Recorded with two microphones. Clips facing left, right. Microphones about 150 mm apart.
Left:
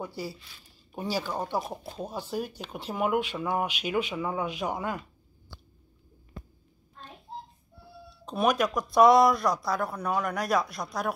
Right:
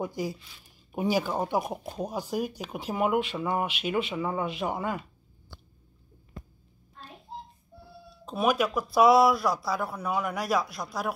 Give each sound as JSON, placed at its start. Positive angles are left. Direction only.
{"t": 0.0, "sound": "speech", "side_deg": -15}
{"t": 8.3, "sound": "speech", "side_deg": -5}